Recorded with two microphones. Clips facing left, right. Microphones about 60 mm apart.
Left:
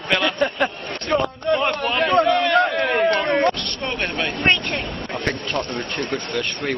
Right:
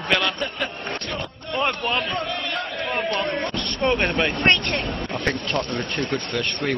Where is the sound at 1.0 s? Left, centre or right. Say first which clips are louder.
Left 11 dB; left.